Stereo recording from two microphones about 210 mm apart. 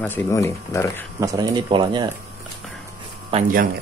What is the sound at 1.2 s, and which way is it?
Speech, 20° right (ahead or behind).